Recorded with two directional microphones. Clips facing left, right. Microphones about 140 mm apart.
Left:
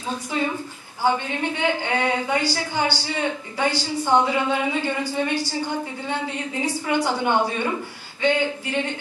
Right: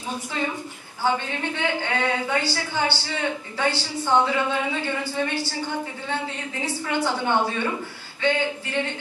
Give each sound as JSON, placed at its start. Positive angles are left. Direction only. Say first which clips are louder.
{"t": 1.0, "sound": "a woman's voice", "louder": "left 2 dB", "side_deg": 15}